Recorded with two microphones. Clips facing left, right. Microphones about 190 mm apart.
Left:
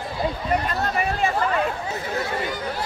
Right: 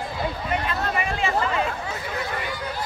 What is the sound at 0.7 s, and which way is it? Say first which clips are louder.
Speech: left 2 dB; 40° left (ahead or behind).